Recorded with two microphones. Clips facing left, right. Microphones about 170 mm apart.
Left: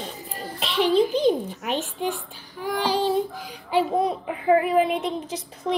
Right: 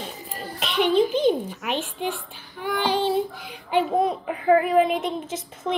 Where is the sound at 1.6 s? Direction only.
40° left (ahead or behind).